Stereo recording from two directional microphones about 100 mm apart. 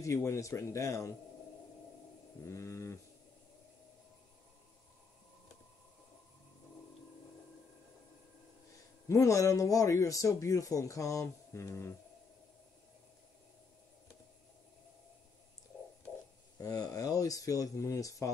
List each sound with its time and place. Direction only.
0.0 s speech: 30° left (ahead or behind)
2.4 s a sound: 30° left (ahead or behind)
9.1 s speech: 30° left (ahead or behind)
16.5 s speech: 40° left (ahead or behind)